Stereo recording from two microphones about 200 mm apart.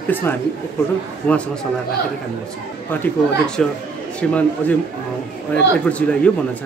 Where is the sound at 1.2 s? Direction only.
5° left (ahead or behind).